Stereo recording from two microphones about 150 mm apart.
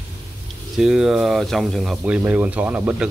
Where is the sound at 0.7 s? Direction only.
5° right (ahead or behind).